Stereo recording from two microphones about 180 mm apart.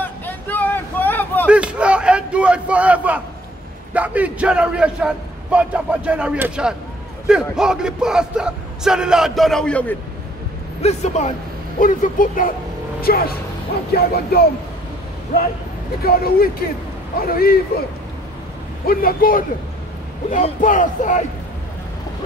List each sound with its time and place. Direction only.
0.0 s a sound: 10° left (ahead or behind)
1.5 s a sound: 5° right (ahead or behind)
3.9 s a man's voice: 10° right (ahead or behind)
10.8 s speech: 35° left (ahead or behind); by 14.4 s 60° left (ahead or behind)
16.0 s speech: 55° left (ahead or behind)
18.9 s speech: 55° left (ahead or behind)